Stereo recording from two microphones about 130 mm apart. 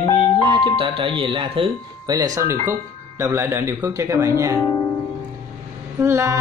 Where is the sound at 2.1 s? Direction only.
25° right (ahead or behind).